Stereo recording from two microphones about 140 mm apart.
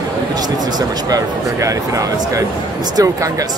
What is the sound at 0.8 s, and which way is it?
Speech, 25° right (ahead or behind).